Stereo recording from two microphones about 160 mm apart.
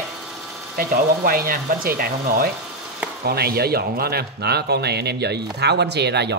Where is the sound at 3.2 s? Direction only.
80° right.